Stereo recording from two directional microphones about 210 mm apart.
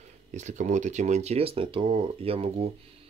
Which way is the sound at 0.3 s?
35° right (ahead or behind).